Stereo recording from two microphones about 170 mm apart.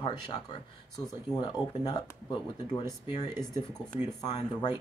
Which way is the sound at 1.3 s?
25° left (ahead or behind).